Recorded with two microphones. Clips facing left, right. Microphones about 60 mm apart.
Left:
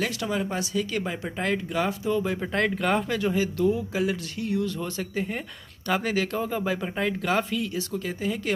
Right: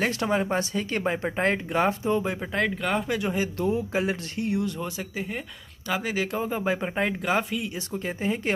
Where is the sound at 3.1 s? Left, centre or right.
Right.